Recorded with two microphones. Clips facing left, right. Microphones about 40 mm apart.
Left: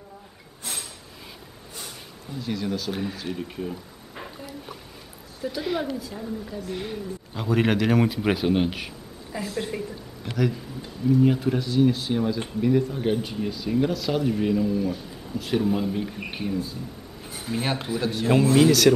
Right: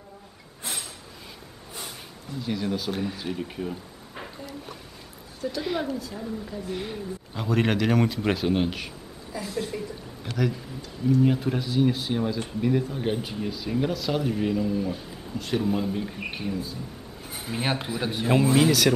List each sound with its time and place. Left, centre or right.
2.4 s speech: centre
2.9 s speech: centre
5.4 s speech: centre
9.6 s a woman's voice: left
11.1 s speech: centre
17.3 s speech: centre